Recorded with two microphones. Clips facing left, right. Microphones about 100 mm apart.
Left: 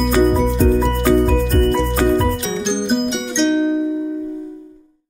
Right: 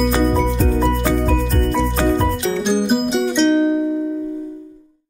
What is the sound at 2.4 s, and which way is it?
Music, 5° right (ahead or behind).